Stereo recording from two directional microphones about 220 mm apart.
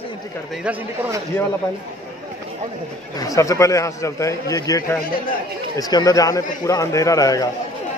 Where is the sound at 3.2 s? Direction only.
15° left (ahead or behind).